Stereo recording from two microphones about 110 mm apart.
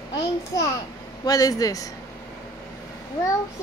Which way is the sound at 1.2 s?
35° left (ahead or behind).